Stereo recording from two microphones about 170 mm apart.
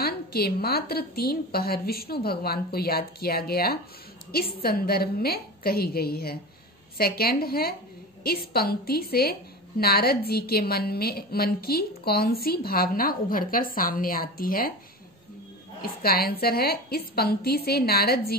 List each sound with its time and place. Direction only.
0.0 s a woman's voice: 65° left (ahead or behind)
15.8 s a woman's voice: 65° left (ahead or behind)